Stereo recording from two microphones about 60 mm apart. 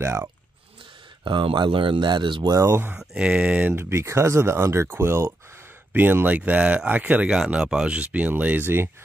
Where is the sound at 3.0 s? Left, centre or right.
Centre.